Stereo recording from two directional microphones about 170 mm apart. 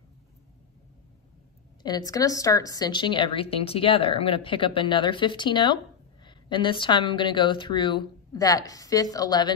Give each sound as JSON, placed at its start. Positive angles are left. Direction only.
{"t": 1.8, "sound": "a woman's voice", "side_deg": 25}